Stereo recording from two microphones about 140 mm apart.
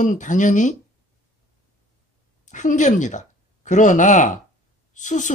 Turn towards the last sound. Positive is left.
turn(degrees=60)  # may be behind; listen again after turning